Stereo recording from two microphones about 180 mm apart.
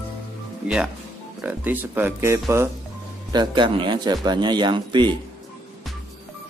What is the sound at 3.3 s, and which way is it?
A man's voice, 25° right (ahead or behind).